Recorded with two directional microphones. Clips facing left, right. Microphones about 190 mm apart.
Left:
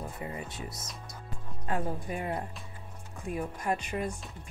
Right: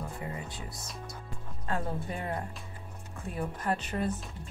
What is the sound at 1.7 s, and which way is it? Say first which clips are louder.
Speech: left 1 dB; 15° left (ahead or behind).